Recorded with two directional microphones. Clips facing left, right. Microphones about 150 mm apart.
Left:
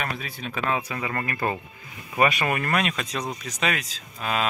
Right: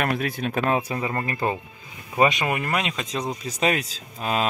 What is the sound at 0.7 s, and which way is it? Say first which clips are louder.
Speech: right 3 dB; 30° right (ahead or behind).